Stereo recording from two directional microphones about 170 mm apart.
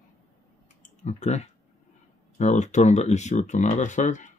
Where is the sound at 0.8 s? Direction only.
45° left (ahead or behind).